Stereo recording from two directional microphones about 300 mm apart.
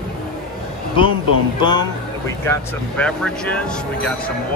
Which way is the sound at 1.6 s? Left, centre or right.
Centre.